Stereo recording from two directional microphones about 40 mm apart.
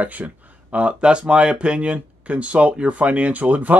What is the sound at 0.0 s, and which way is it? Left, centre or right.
Speech, right.